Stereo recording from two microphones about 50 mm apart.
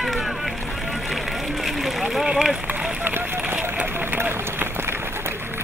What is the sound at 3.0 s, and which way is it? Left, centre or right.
Run, right.